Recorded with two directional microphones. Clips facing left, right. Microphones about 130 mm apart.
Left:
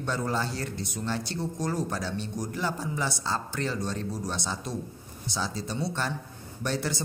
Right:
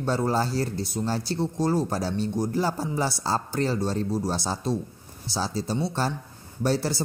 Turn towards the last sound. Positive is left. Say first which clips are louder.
# right 5 dB
turn(degrees=-35)  # may be behind; listen again after turning